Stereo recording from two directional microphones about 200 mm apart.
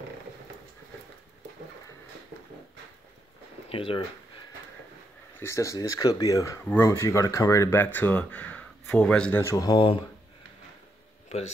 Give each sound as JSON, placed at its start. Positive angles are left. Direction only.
{"t": 3.6, "sound": "speech", "side_deg": 25}
{"t": 5.4, "sound": "speech", "side_deg": 15}